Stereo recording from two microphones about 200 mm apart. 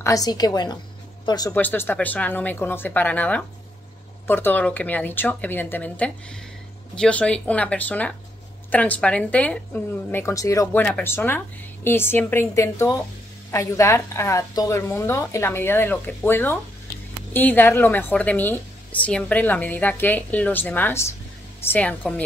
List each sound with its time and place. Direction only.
0.0 s a woman's voice: 15° left (ahead or behind)
1.5 s a woman's voice: 10° left (ahead or behind)